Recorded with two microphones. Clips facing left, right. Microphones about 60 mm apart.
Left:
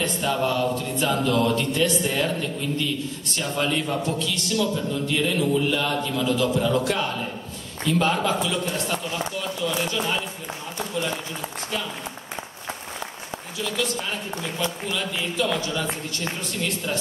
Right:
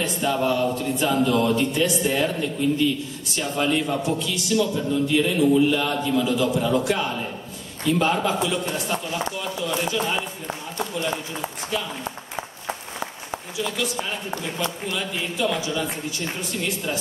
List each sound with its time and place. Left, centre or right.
0.0 s a man's voice: centre
3.3 s a man's voice: centre
12.6 s a sound: centre
14.3 s a man's voice: right
15.0 s a man's voice: centre